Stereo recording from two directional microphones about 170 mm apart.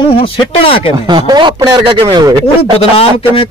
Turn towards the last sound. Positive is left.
turn(degrees=35)  # may be behind; listen again after turning